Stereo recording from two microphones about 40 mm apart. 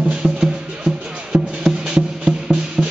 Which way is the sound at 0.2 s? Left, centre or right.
Right.